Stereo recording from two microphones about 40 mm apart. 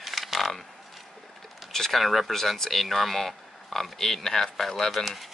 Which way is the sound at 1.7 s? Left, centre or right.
Centre.